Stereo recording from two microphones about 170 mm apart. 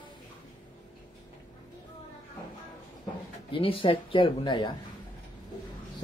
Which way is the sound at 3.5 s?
30° left (ahead or behind).